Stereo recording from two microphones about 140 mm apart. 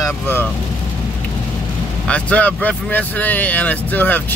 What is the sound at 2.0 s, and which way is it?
Speech, 10° left (ahead or behind).